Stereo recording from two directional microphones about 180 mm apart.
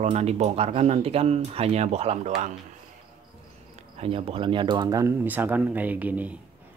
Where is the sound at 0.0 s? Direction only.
35° right (ahead or behind).